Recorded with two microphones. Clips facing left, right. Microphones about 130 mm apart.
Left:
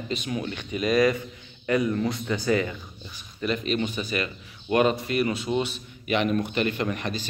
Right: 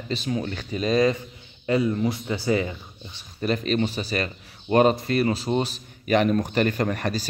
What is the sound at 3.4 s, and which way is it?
A man's voice, 40° right (ahead or behind).